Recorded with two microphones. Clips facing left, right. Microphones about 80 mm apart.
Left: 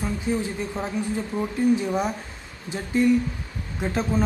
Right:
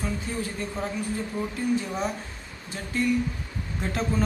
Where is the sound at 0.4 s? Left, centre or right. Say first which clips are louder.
Left 2 dB; centre.